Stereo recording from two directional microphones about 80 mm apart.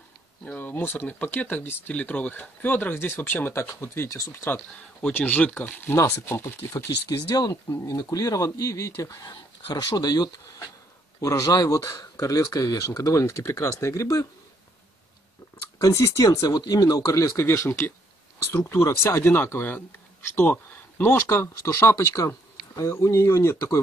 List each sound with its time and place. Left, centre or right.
0.6 s speech: left
5.1 s speech: left
5.9 s speech: left
7.1 s speech: left
7.7 s speech: left
15.8 s speech: left
19.3 s speech: left